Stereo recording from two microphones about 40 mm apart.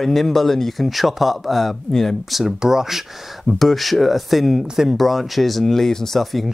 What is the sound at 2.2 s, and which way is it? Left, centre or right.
Speech, centre.